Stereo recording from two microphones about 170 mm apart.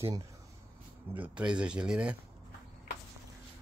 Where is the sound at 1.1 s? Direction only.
10° right (ahead or behind).